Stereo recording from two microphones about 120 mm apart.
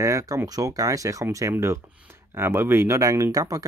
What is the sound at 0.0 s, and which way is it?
Speech, 25° right (ahead or behind).